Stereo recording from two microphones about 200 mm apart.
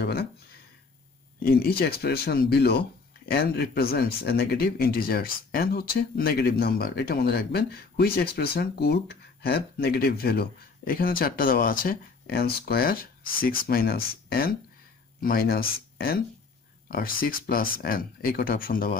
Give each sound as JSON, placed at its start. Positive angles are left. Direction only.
{"t": 0.0, "sound": "a sound", "side_deg": 50}
{"t": 1.4, "sound": "speech", "side_deg": 50}
{"t": 16.9, "sound": "speech", "side_deg": 45}